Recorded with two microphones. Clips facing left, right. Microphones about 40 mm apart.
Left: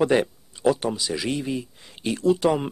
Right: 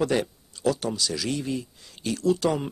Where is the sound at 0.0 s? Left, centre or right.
Left.